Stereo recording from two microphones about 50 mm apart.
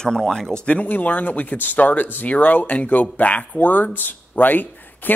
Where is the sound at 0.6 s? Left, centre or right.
Left.